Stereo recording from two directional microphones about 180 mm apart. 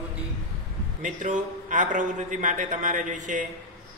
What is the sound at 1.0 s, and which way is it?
A man's voice, 45° right (ahead or behind).